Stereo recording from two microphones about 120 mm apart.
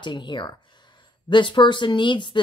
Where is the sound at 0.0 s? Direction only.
40° left (ahead or behind).